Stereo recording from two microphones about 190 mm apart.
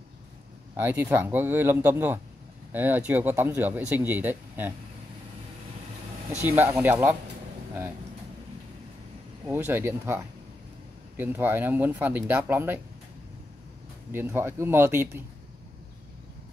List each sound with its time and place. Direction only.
0.7 s speech: 10° right (ahead or behind)
6.4 s speech: 10° right (ahead or behind)
9.5 s speech: 10° right (ahead or behind)
14.1 s speech: 10° right (ahead or behind)